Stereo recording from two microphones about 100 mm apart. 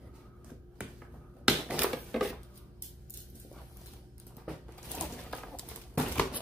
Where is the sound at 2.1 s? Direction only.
Centre (ahead or behind).